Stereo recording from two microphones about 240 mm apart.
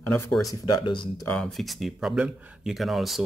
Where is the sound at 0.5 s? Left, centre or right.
Centre.